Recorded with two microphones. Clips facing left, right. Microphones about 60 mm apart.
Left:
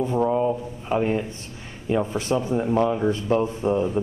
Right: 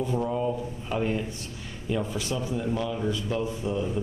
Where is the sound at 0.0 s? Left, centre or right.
Left.